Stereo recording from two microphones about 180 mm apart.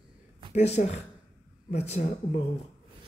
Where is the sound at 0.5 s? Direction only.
35° left (ahead or behind).